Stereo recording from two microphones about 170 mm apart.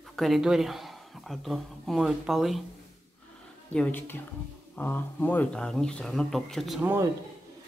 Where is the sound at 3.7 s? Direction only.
10° left (ahead or behind).